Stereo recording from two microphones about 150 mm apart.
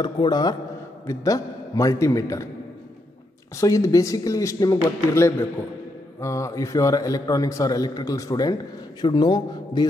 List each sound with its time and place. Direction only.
0.0 s a man's voice: 30° left (ahead or behind)
3.5 s a man's voice: 20° left (ahead or behind)